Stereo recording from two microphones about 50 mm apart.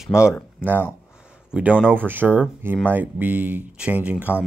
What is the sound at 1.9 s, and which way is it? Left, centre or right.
Speech, right.